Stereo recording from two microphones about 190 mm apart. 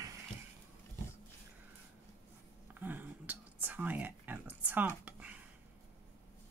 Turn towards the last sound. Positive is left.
turn(degrees=-10)  # may be behind; listen again after turning